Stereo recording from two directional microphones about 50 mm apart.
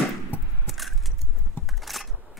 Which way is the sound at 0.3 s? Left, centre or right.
Left.